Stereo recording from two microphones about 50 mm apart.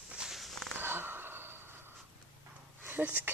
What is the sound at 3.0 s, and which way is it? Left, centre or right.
Speech, right.